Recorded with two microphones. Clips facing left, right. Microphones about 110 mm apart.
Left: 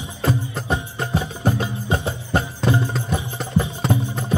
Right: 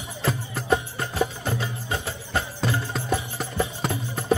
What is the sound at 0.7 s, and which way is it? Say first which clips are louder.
Music: even; 20° left (ahead or behind).